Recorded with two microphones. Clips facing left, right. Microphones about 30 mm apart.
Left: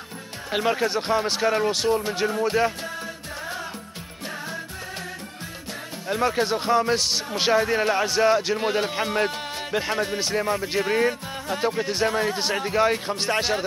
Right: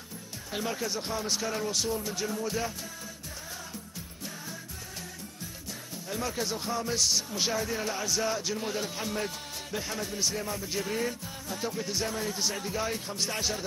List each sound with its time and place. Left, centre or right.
0.5 s speech: left
6.0 s speech: left